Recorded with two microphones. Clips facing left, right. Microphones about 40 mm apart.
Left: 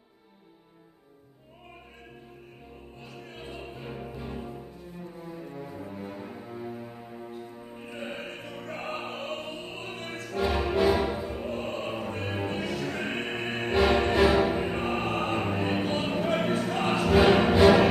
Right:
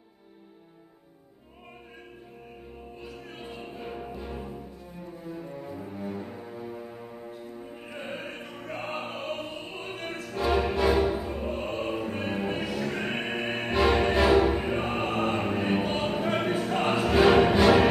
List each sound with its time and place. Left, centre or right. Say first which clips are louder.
3.1 s music: left 1 dB; centre
17.2 s music: right 2 dB; centre